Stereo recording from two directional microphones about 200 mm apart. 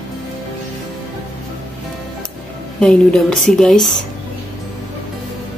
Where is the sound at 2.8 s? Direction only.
5° left (ahead or behind).